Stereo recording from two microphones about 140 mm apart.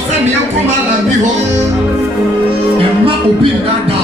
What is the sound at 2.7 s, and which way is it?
Music, 40° right (ahead or behind).